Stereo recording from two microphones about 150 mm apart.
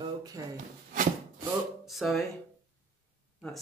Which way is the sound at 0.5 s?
60° right (ahead or behind).